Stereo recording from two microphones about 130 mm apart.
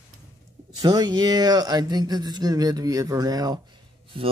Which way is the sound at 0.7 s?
30° right (ahead or behind).